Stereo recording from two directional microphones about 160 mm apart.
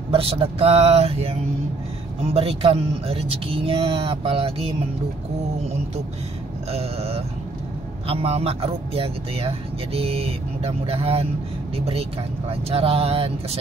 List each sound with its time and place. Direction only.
0.1 s speech: 35° right (ahead or behind)
2.3 s speech: 35° right (ahead or behind)
6.7 s speech: 40° right (ahead or behind)